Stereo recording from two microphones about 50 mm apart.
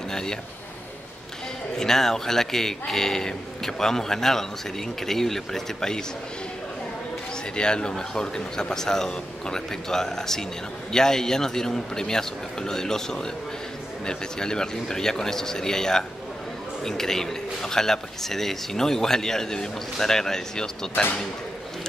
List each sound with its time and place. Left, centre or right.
0.1 s speech: centre
1.8 s a man's voice: centre
7.5 s a man's voice: centre